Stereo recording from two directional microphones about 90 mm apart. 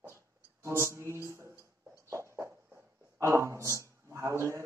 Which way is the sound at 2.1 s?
30° right (ahead or behind).